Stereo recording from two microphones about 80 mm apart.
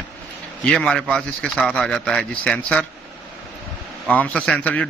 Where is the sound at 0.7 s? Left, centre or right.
Centre.